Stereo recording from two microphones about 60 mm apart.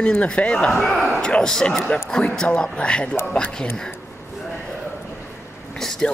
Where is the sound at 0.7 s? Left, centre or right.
Centre.